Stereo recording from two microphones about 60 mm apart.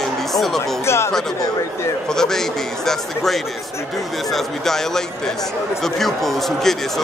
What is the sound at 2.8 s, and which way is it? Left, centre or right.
Speech, centre.